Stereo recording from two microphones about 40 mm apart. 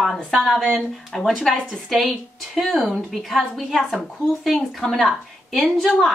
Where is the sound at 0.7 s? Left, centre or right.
Centre.